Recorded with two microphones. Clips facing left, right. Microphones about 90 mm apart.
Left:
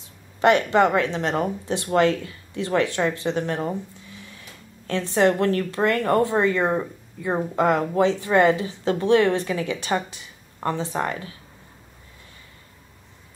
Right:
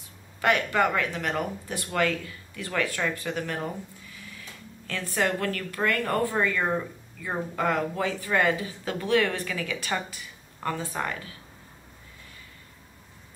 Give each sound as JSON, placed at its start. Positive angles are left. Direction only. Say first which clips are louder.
{"t": 0.4, "sound": "speech", "louder": "left 6 dB", "side_deg": 25}